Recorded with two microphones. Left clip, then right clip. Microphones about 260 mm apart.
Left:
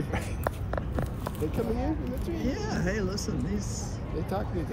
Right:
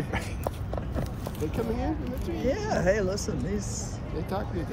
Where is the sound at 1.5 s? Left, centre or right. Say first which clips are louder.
Right 1 dB; right.